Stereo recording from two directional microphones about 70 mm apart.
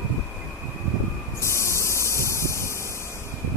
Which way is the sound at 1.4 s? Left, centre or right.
Left.